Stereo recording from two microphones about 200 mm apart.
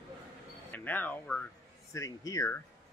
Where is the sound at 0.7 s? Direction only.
10° left (ahead or behind).